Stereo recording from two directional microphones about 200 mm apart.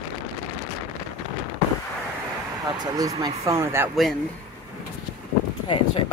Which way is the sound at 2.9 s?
20° right (ahead or behind).